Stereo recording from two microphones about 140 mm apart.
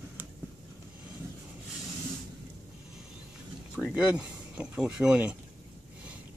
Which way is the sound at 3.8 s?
10° right (ahead or behind).